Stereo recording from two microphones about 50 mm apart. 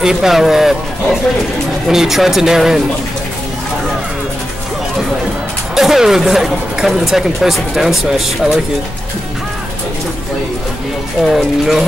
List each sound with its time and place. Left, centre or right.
0.0 s speech: centre
1.9 s speech: centre
5.8 s speech: centre
11.2 s speech: centre